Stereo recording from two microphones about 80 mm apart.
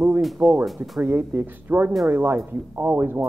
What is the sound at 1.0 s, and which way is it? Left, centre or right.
Speech, right.